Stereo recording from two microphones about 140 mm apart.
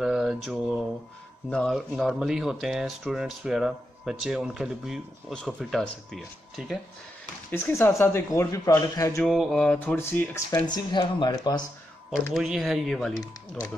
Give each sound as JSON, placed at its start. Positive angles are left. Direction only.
{"t": 0.0, "sound": "mantra", "side_deg": -5}
{"t": 1.5, "sound": "speech", "side_deg": 5}
{"t": 7.5, "sound": "speech", "side_deg": 15}
{"t": 9.2, "sound": "speech", "side_deg": 0}
{"t": 9.9, "sound": "speech", "side_deg": 15}
{"t": 10.9, "sound": "speech", "side_deg": 35}
{"t": 12.4, "sound": "speech", "side_deg": 0}